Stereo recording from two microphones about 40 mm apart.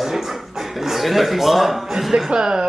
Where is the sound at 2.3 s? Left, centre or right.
Right.